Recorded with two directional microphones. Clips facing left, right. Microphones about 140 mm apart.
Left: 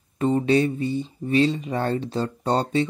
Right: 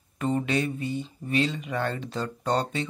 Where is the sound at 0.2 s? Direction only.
30° left (ahead or behind).